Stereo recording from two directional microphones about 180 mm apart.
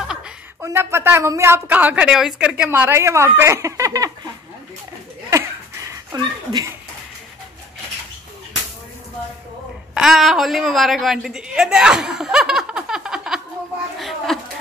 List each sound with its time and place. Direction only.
0.1 s speech: 15° right (ahead or behind)
6.1 s speech: 20° right (ahead or behind)
9.9 s a woman's voice: centre (ahead or behind)
13.9 s a sound: centre (ahead or behind)